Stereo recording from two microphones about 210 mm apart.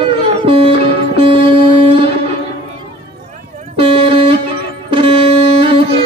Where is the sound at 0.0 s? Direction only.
25° right (ahead or behind).